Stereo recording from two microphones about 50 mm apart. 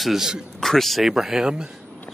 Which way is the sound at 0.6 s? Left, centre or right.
Centre.